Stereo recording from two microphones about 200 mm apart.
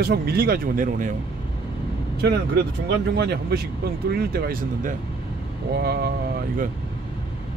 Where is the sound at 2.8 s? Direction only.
55° right (ahead or behind).